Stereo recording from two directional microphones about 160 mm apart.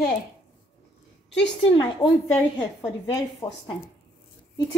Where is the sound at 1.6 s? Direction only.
30° left (ahead or behind).